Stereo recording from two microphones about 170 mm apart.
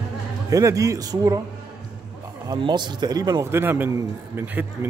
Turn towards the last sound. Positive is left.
turn(degrees=-10)  # may be behind; listen again after turning